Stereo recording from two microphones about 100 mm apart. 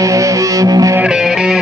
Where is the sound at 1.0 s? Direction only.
5° right (ahead or behind).